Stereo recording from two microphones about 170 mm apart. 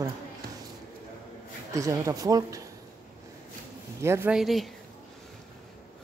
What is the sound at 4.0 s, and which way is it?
Speech, 15° right (ahead or behind).